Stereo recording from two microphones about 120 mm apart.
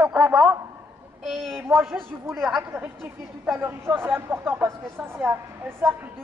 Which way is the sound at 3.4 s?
15° right (ahead or behind).